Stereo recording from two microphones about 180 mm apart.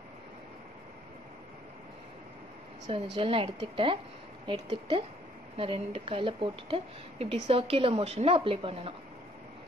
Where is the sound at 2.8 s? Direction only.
30° right (ahead or behind).